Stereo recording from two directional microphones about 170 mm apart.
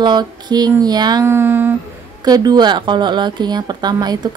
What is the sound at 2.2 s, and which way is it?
Speech, 25° right (ahead or behind).